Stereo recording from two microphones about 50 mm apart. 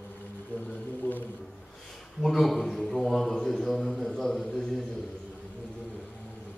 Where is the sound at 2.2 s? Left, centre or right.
Centre.